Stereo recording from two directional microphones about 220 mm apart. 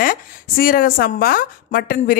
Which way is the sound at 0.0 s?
40° left (ahead or behind).